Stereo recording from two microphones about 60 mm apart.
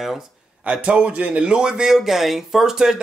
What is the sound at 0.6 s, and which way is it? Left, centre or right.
A man's voice, centre.